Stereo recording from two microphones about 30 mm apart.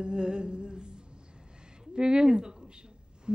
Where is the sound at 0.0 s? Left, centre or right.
Right.